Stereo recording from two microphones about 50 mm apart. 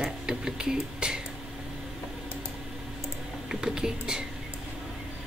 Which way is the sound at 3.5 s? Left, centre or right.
Centre.